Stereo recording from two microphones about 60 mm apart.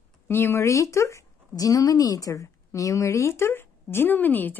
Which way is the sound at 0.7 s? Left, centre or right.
Left.